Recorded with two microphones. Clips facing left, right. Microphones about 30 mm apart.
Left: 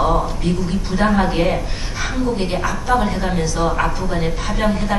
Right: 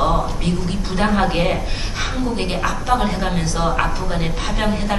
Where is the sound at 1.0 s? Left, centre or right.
Centre.